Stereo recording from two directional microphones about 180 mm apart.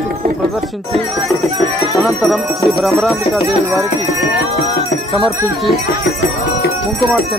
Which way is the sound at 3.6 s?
15° right (ahead or behind).